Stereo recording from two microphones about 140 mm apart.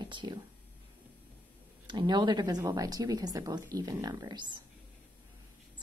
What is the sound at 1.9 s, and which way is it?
Speech, 30° right (ahead or behind).